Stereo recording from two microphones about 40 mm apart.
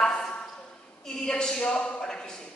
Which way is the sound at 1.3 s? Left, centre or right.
Centre.